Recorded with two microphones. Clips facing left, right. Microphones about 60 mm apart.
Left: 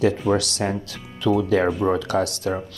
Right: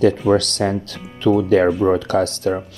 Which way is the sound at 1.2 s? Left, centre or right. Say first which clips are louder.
Right 5 dB; right.